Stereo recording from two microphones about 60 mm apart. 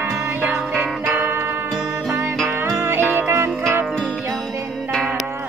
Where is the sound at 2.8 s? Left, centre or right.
Right.